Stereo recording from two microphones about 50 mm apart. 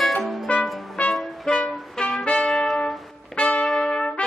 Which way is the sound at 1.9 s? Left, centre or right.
Centre.